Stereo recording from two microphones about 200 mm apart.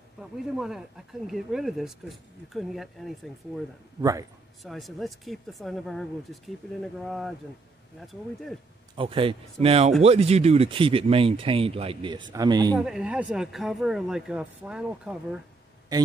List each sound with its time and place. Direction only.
0.2 s speech: centre (ahead or behind)
4.0 s a man's voice: 15° right (ahead or behind)
4.6 s speech: centre (ahead or behind)
8.9 s speech: 25° right (ahead or behind)
12.7 s speech: 5° right (ahead or behind)